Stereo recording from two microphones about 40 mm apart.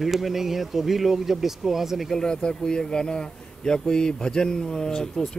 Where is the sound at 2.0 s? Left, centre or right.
Centre.